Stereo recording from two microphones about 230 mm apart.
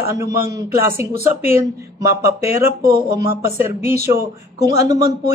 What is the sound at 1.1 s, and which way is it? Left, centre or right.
Speech, left.